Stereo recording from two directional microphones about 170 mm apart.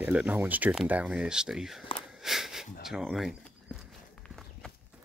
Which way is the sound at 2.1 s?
Centre (ahead or behind).